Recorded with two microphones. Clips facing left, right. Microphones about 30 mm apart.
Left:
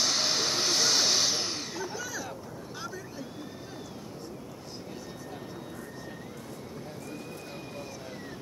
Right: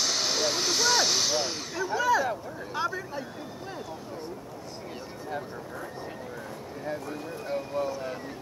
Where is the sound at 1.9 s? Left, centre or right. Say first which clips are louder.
Right 12 dB; right.